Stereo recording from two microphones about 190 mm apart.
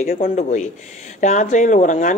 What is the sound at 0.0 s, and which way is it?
Speech, 50° left (ahead or behind).